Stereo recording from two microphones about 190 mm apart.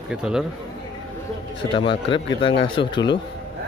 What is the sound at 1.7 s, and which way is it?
Speech, 25° left (ahead or behind).